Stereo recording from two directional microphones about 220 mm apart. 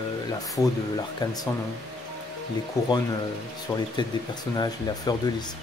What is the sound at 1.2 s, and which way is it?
Speech, 20° left (ahead or behind).